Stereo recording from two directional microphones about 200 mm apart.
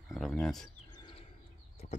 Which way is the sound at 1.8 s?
35° left (ahead or behind).